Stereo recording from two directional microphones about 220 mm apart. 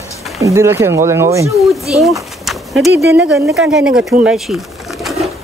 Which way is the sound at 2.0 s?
Centre (ahead or behind).